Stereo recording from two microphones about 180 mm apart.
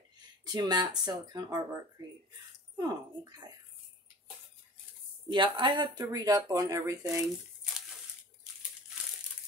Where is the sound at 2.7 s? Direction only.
20° right (ahead or behind).